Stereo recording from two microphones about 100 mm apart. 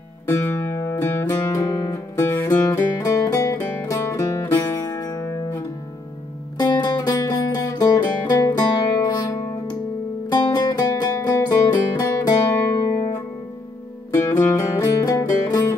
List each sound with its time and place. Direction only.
0.3 s music: 25° left (ahead or behind)
1.6 s music: 35° left (ahead or behind)
2.1 s music: 25° left (ahead or behind)
6.6 s music: 45° left (ahead or behind)
10.3 s music: 40° left (ahead or behind)
14.1 s music: 25° left (ahead or behind)